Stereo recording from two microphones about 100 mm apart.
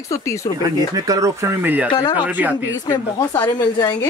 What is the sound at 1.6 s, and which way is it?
Speech, 20° right (ahead or behind).